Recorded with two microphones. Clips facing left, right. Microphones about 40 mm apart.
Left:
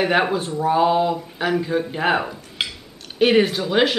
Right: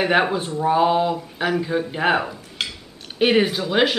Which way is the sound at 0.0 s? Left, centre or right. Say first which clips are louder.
Even; centre.